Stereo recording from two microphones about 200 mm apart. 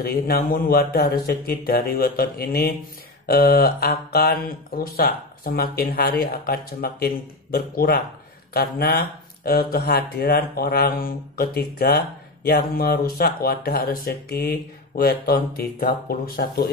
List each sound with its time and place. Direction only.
0.0 s speech: 50° left (ahead or behind)